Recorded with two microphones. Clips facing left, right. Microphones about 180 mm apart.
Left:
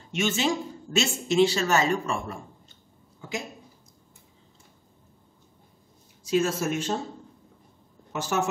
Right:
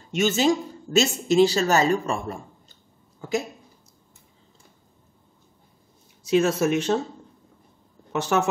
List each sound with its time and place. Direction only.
0.1 s speech: 40° right (ahead or behind)
6.2 s speech: 70° right (ahead or behind)
8.1 s a woman's voice: 65° right (ahead or behind)